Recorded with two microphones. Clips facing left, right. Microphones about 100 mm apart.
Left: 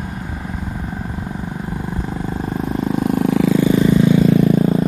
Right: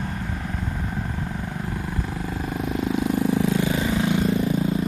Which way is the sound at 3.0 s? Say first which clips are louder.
Left 6 dB; 55° left (ahead or behind).